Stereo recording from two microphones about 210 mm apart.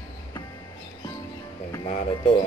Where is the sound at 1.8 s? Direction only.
35° left (ahead or behind).